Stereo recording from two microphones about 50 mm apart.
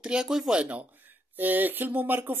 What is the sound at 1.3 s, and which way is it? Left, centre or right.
Speech, right.